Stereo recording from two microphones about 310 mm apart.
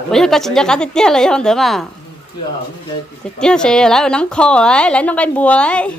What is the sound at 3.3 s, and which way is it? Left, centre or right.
A woman's voice, centre.